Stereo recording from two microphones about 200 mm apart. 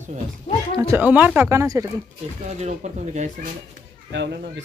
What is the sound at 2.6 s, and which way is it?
Speech, 35° right (ahead or behind).